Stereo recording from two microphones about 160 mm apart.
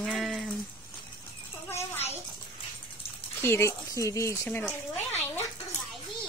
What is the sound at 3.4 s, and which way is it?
Speech, 15° left (ahead or behind).